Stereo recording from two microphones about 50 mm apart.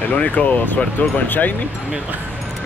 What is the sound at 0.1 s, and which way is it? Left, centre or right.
Speech, left.